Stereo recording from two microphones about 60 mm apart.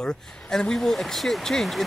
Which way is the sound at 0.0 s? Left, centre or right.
Centre.